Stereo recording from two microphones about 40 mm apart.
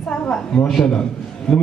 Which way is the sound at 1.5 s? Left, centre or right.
Centre.